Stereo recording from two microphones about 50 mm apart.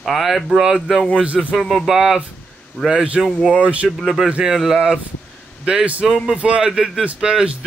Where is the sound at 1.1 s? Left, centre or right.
Right.